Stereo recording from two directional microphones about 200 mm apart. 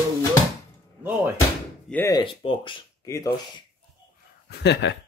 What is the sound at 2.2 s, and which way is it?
Speech, 25° left (ahead or behind).